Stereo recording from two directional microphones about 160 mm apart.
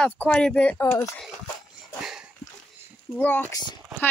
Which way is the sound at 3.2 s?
10° left (ahead or behind).